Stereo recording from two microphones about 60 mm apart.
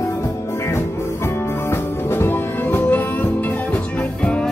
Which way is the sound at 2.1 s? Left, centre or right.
Left.